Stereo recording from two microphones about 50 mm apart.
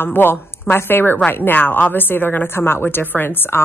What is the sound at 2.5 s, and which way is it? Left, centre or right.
A woman's voice, left.